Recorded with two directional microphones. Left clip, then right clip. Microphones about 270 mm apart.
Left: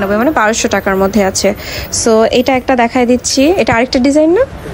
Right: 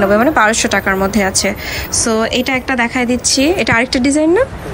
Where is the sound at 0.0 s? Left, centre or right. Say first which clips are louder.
Right 1 dB; centre.